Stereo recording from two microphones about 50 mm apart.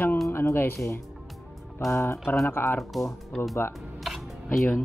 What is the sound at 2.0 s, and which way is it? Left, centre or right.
Speech, left.